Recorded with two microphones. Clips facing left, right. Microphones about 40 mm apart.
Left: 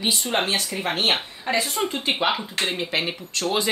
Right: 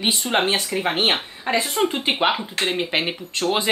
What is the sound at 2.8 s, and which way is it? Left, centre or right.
Speech, right.